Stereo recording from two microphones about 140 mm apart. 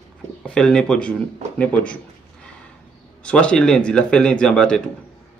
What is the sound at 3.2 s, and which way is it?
Speech, 5° left (ahead or behind).